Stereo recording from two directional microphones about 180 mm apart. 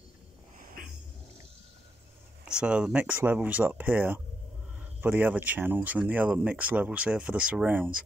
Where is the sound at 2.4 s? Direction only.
5° right (ahead or behind).